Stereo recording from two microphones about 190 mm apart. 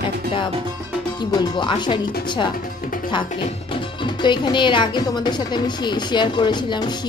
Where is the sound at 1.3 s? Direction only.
25° left (ahead or behind).